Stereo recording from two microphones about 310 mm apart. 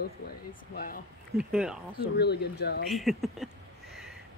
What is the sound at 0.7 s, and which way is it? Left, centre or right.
Speech, left.